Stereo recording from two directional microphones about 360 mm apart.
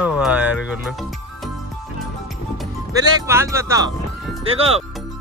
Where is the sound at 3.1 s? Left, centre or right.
Centre.